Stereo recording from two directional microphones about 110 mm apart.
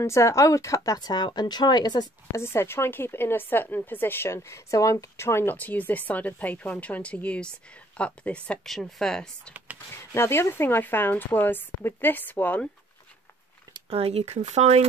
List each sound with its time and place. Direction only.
0.0 s speech: 25° left (ahead or behind)
2.3 s speech: 25° left (ahead or behind); by 9.5 s 5° left (ahead or behind)
10.1 s speech: 25° left (ahead or behind)
13.7 s speech: 55° right (ahead or behind); by 14.9 s 75° right (ahead or behind)